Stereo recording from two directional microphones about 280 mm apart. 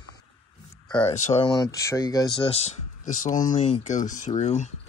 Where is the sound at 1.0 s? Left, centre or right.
Left.